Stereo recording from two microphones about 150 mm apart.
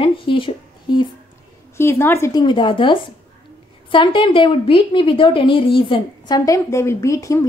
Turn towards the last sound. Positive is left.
turn(degrees=20)  # may be behind; listen again after turning